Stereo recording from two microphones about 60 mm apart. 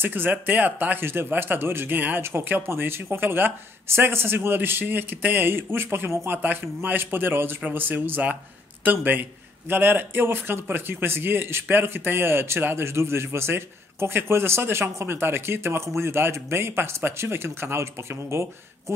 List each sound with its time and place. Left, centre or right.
0.0 s a man's voice: right